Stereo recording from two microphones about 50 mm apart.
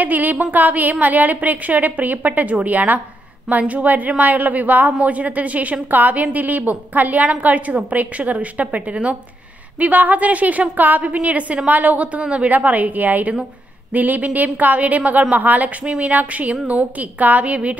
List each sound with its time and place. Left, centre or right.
0.0 s a woman's voice: right
15.8 s speech: centre
16.1 s a woman's voice: right